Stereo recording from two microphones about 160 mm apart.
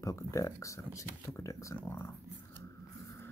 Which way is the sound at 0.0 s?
20° left (ahead or behind).